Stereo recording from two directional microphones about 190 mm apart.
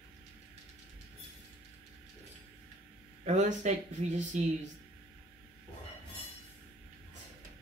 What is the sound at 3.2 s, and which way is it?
Speech, 40° right (ahead or behind).